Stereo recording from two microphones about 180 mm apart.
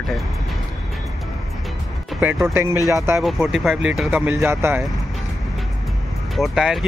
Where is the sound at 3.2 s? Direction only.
Centre (ahead or behind).